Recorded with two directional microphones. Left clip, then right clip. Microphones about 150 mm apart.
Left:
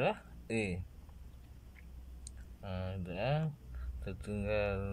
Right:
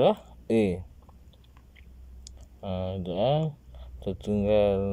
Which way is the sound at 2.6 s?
20° right (ahead or behind).